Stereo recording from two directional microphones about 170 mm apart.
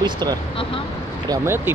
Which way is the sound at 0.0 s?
25° right (ahead or behind).